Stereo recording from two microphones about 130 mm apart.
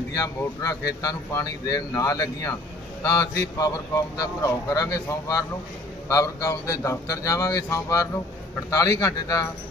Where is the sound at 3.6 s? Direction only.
25° left (ahead or behind).